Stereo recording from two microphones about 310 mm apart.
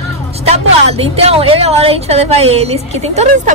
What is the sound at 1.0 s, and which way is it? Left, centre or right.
A woman's voice, centre.